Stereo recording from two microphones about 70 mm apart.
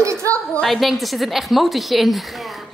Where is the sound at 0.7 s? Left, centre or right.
Centre.